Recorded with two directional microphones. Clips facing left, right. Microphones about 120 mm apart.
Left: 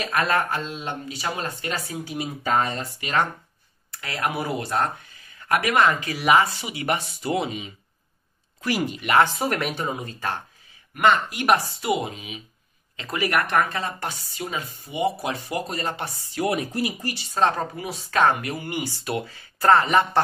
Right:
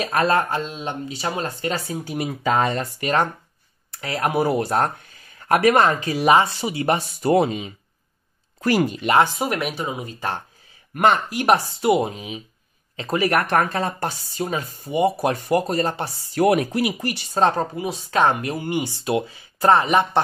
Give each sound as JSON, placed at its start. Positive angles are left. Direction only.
{"t": 0.0, "sound": "speech", "side_deg": -35}
{"t": 2.4, "sound": "speech", "side_deg": -85}
{"t": 3.0, "sound": "speech", "side_deg": -40}
{"t": 9.2, "sound": "speech", "side_deg": -10}
{"t": 11.0, "sound": "speech", "side_deg": -35}
{"t": 16.3, "sound": "speech", "side_deg": -65}
{"t": 17.3, "sound": "speech", "side_deg": -35}
{"t": 17.7, "sound": "speech", "side_deg": -20}